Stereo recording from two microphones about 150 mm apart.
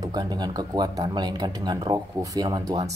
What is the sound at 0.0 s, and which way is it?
Speech, 25° right (ahead or behind).